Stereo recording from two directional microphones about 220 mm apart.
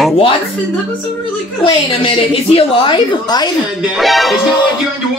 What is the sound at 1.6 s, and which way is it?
A woman's voice, 25° left (ahead or behind).